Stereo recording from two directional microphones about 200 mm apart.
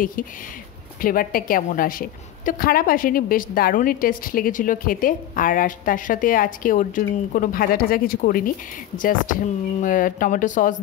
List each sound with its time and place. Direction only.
1.0 s a woman's voice: 45° left (ahead or behind)